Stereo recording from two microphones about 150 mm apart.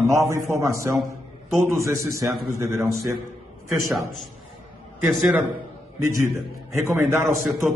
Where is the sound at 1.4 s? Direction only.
Centre (ahead or behind).